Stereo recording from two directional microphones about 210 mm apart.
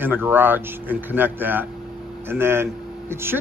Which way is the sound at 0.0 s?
10° right (ahead or behind).